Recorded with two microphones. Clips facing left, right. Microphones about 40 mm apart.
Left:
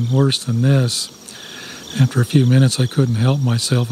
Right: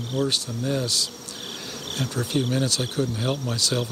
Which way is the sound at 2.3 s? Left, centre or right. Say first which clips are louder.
Left 8 dB; left.